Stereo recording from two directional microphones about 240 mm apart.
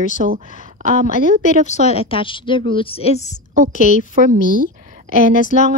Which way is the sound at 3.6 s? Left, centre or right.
Right.